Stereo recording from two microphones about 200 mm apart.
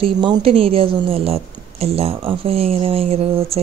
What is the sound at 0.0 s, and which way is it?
A woman's voice, 25° right (ahead or behind).